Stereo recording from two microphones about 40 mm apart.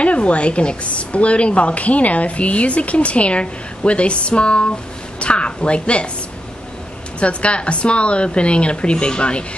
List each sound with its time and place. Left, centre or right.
0.0 s a woman's voice: left
5.2 s a sound: left
7.2 s a woman's voice: left